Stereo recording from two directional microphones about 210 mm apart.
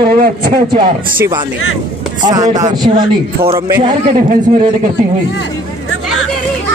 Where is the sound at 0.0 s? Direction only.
45° right (ahead or behind).